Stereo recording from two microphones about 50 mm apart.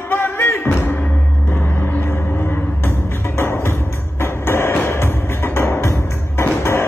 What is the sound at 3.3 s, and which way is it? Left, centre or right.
Music, left.